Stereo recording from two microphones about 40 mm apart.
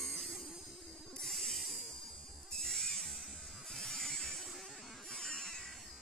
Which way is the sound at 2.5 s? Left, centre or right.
Centre.